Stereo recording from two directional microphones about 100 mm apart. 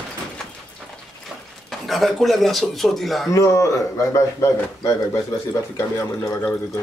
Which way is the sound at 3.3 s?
30° left (ahead or behind).